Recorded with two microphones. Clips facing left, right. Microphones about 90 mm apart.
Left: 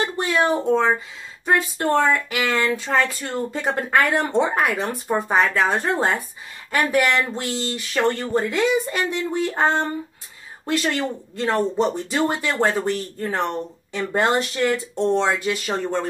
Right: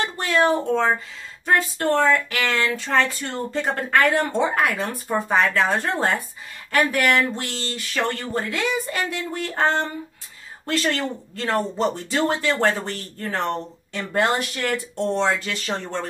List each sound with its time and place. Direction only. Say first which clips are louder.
0.2 s speech: right 2 dB; 15° left (ahead or behind)
14.1 s speech: left 1 dB; 20° left (ahead or behind)